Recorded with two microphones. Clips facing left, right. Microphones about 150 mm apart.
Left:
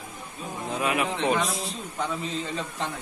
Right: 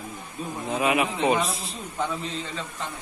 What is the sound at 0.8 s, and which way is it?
Speech, 10° right (ahead or behind).